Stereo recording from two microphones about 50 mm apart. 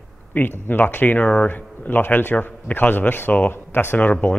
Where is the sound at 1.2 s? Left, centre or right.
Centre.